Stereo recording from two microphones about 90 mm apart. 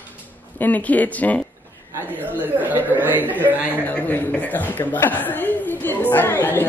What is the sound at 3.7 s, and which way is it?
A man's voice, 20° left (ahead or behind).